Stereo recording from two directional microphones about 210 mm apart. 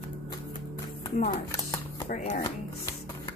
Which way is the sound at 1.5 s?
15° left (ahead or behind).